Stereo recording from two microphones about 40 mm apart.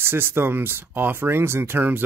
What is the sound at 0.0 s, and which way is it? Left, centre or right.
Speech, right.